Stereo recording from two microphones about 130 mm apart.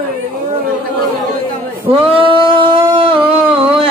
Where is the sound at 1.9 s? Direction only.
45° right (ahead or behind).